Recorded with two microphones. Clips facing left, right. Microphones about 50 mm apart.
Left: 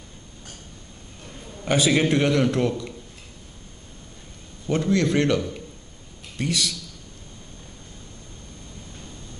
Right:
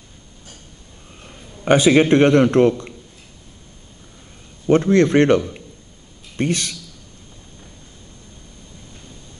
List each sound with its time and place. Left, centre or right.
1.7 s a man's voice: right
4.6 s a man's voice: right